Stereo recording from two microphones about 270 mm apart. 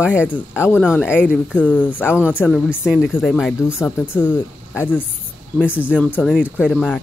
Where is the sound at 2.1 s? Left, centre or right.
Centre.